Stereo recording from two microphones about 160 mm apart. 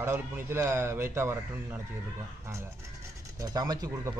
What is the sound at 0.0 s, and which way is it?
Speech, 15° right (ahead or behind).